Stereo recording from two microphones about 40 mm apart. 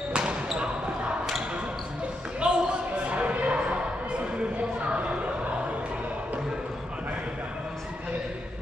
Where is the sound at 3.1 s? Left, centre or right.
Right.